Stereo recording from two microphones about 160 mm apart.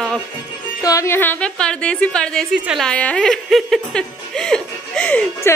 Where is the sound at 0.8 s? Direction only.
20° left (ahead or behind); by 2.9 s 5° right (ahead or behind).